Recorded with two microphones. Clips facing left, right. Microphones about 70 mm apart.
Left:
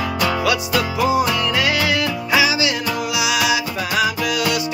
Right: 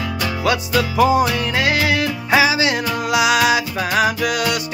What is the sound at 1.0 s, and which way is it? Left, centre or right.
Music, right.